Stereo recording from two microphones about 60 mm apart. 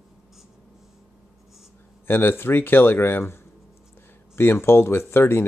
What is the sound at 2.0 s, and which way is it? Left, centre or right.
Speech, left.